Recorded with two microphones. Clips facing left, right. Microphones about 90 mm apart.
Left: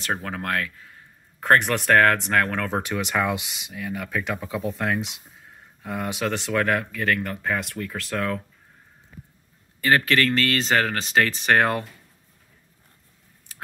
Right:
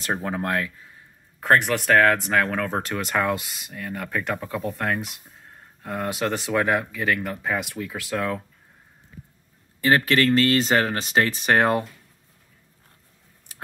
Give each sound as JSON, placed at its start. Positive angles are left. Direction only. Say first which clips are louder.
{"t": 0.0, "sound": "speech", "louder": "right 2 dB", "side_deg": -20}
{"t": 1.4, "sound": "speech", "louder": "even", "side_deg": 0}
{"t": 5.4, "sound": "a sound", "louder": "right 1 dB", "side_deg": 0}
{"t": 6.1, "sound": "speech", "louder": "right 1 dB", "side_deg": -10}
{"t": 9.8, "sound": "speech", "louder": "right 1 dB", "side_deg": -25}